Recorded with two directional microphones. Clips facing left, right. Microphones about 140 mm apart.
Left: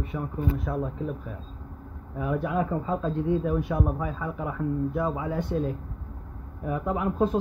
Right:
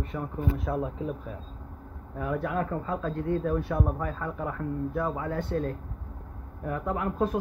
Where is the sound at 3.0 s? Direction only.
20° left (ahead or behind).